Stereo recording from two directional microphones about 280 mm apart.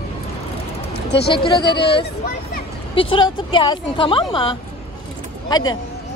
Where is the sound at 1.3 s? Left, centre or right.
Centre.